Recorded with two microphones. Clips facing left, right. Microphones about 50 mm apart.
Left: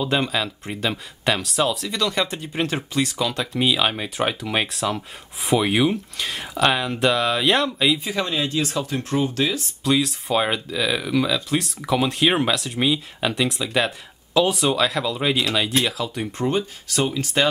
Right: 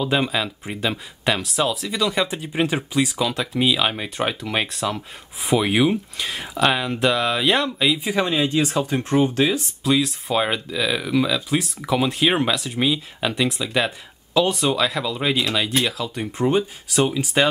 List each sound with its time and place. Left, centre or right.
0.0 s speech: centre
8.0 s speech: right
9.8 s speech: centre